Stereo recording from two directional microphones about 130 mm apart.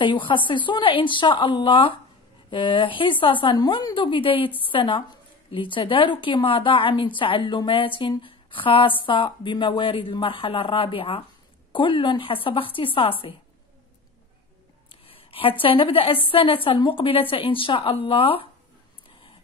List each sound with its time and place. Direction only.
0.0 s a woman's voice: 40° left (ahead or behind)
14.9 s a sound: 45° left (ahead or behind)
15.6 s a woman's voice: 45° left (ahead or behind)